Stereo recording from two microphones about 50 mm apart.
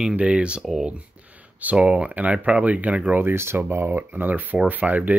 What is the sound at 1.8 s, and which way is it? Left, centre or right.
Speech, centre.